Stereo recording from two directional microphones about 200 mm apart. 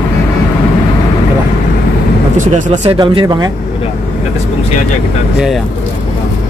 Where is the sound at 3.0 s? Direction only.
20° right (ahead or behind).